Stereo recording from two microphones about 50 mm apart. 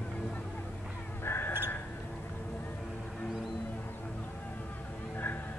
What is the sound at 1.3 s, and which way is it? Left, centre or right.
Crow, left.